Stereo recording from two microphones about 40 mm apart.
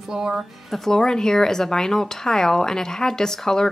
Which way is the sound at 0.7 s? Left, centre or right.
Centre.